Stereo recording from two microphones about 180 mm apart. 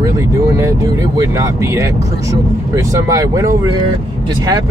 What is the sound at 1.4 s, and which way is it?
Speech, 15° right (ahead or behind).